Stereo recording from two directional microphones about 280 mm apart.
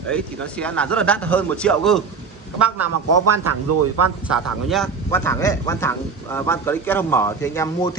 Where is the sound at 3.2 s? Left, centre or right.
Right.